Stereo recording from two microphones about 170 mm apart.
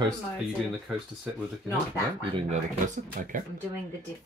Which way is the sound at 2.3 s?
40° right (ahead or behind).